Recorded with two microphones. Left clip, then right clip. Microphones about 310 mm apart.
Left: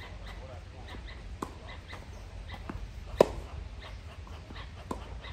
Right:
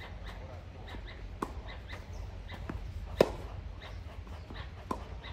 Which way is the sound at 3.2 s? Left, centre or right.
Centre.